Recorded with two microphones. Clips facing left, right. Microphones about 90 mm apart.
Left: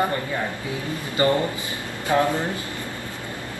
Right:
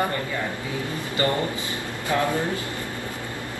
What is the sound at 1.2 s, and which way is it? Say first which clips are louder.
A man's voice: left 4 dB; 20° left (ahead or behind).